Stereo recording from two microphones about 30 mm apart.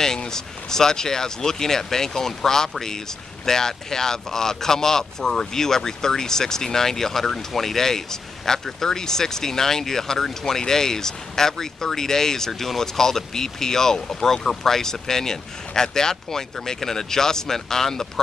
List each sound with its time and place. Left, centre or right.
0.0 s speech: centre